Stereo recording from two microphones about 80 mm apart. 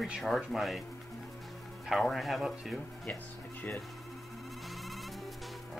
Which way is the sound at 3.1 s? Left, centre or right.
Centre.